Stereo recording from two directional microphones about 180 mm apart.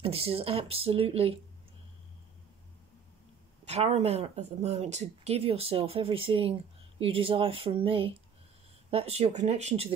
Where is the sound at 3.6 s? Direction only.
35° right (ahead or behind).